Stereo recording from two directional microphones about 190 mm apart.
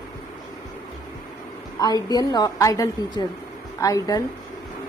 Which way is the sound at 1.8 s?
20° left (ahead or behind).